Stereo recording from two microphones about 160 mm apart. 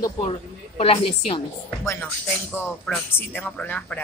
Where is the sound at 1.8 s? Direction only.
15° left (ahead or behind).